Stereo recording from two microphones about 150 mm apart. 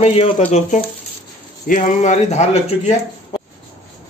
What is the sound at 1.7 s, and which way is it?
Speech, 55° left (ahead or behind).